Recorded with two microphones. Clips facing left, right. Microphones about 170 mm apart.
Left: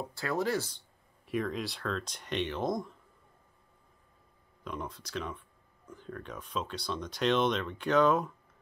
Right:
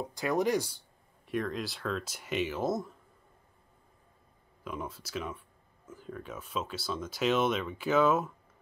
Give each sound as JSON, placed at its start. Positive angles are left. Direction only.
{"t": 0.1, "sound": "speech", "side_deg": -15}
{"t": 1.2, "sound": "speech", "side_deg": 0}
{"t": 4.6, "sound": "speech", "side_deg": -5}